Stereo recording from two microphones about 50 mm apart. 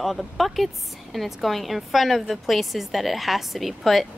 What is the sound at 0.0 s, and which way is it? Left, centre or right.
Speech, centre.